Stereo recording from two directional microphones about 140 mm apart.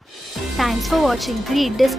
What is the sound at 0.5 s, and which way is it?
Speech, centre (ahead or behind).